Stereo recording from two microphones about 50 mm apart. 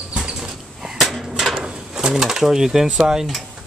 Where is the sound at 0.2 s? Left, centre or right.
Centre.